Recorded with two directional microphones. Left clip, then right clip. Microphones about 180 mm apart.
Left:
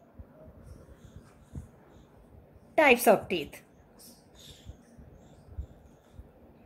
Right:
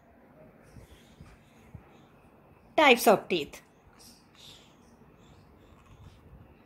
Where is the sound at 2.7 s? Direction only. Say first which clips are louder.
Right 1 dB; 15° right (ahead or behind).